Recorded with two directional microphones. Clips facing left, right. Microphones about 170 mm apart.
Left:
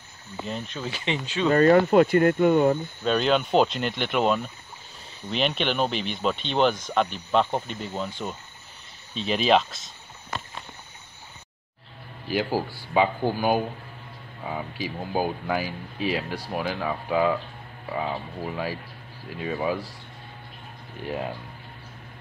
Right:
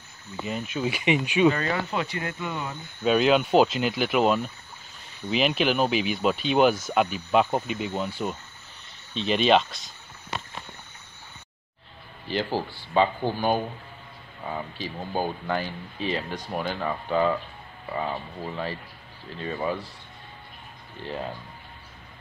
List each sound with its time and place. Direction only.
0.5 s speech: 10° right (ahead or behind)
1.5 s speech: 50° left (ahead or behind)
3.0 s speech: 5° right (ahead or behind)
12.3 s speech: 10° left (ahead or behind)
21.0 s speech: 15° left (ahead or behind)